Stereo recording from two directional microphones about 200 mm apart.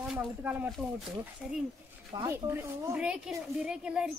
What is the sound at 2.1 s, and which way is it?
Speech, 15° right (ahead or behind).